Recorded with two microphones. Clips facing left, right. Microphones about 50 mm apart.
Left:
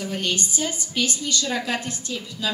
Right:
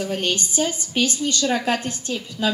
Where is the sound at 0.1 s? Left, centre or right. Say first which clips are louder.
Right 2 dB; right.